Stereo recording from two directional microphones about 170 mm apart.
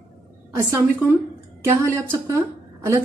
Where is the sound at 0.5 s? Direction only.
15° right (ahead or behind).